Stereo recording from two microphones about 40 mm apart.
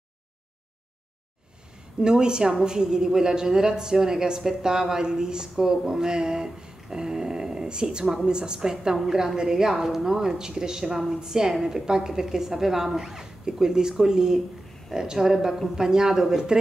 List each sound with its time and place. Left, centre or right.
2.0 s a woman's voice: centre